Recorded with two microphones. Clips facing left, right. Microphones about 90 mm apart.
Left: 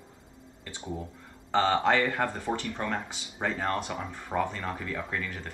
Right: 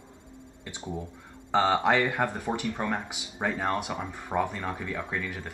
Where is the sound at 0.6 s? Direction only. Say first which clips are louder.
Right 1 dB; 10° right (ahead or behind).